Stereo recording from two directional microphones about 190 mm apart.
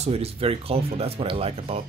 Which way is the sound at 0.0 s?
30° right (ahead or behind).